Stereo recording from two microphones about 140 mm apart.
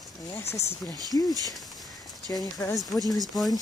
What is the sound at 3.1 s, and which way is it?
Speech, centre (ahead or behind).